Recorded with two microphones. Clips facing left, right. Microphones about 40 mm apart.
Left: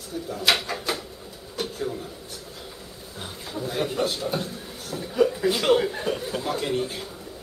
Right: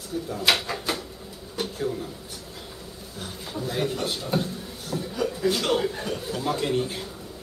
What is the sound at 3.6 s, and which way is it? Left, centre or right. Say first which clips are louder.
Speech: left 1 dB; centre.